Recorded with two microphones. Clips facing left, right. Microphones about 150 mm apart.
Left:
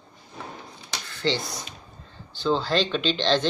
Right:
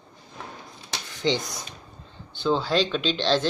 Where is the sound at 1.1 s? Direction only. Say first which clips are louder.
Right 1 dB; 15° right (ahead or behind).